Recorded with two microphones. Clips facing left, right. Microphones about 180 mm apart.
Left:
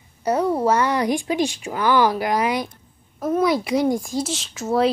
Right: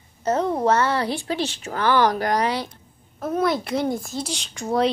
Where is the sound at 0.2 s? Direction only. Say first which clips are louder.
Left 2 dB; 10° left (ahead or behind).